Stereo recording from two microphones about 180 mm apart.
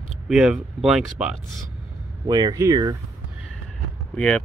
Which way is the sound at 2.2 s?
20° right (ahead or behind).